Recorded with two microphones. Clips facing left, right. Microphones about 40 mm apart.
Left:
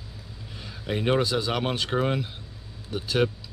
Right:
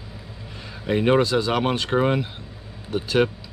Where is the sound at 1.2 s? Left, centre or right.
Centre.